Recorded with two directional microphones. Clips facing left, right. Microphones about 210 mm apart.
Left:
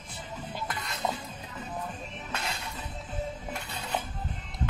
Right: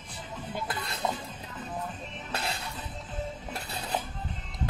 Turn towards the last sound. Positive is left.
turn(degrees=-35)  # may be behind; listen again after turning